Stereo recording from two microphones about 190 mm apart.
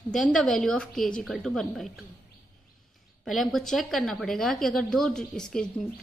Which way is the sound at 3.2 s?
Centre (ahead or behind).